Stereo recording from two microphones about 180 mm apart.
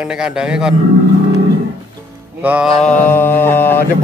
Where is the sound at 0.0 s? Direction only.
5° right (ahead or behind).